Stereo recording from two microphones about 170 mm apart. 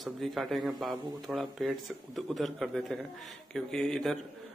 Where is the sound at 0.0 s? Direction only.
Centre (ahead or behind).